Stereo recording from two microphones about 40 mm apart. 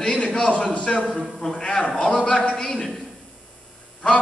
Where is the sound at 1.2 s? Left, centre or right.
Centre.